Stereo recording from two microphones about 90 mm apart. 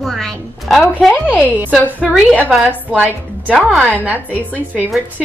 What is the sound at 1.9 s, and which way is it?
A woman's voice, 15° right (ahead or behind).